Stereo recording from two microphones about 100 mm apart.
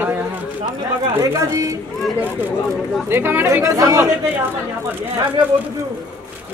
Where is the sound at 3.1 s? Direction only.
20° right (ahead or behind).